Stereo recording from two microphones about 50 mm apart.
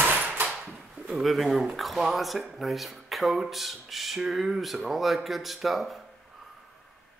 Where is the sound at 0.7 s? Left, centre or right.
Right.